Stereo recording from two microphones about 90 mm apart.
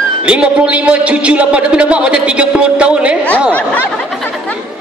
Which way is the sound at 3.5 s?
15° left (ahead or behind).